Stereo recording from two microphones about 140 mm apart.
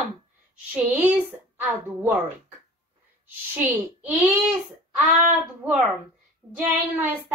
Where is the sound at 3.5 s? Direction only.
15° right (ahead or behind).